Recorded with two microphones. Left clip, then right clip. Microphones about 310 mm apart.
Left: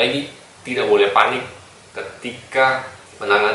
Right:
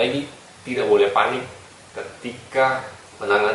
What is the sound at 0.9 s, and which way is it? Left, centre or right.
Speech, centre.